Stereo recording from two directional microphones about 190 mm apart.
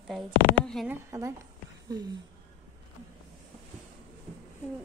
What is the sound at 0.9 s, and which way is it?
Speech, 15° right (ahead or behind).